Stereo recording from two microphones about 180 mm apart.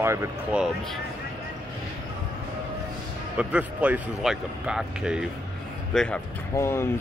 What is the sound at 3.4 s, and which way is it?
Speech, 5° right (ahead or behind).